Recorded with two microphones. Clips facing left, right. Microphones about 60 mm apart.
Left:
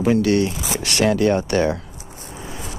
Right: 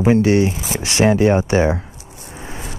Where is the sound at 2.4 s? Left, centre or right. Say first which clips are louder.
Right 2 dB; right.